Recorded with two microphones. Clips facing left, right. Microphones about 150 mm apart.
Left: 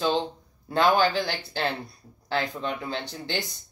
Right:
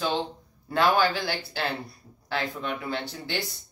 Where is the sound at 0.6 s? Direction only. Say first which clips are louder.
Left 1 dB; 20° left (ahead or behind).